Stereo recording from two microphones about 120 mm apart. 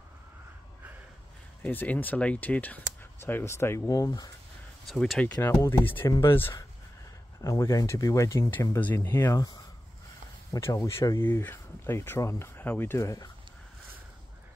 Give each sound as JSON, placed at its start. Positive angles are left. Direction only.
{"t": 1.6, "sound": "speech", "side_deg": 15}
{"t": 4.8, "sound": "speech", "side_deg": 0}
{"t": 5.2, "sound": "speech", "side_deg": 15}
{"t": 6.0, "sound": "speech", "side_deg": 30}
{"t": 6.3, "sound": "speech", "side_deg": 20}